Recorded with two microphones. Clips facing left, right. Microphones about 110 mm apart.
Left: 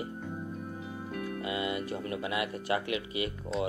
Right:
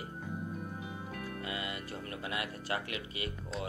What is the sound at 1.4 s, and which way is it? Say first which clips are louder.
Speech: left 9 dB; 25° left (ahead or behind).